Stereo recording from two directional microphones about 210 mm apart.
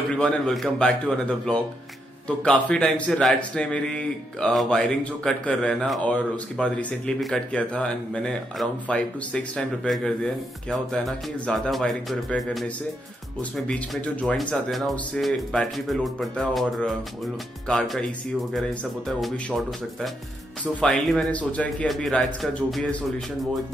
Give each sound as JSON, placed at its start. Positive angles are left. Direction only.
{"t": 0.1, "sound": "speech", "side_deg": 5}